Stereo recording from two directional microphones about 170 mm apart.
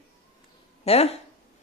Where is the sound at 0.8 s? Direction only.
40° left (ahead or behind).